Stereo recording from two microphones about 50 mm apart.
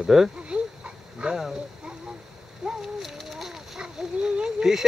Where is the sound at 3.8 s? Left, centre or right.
Centre.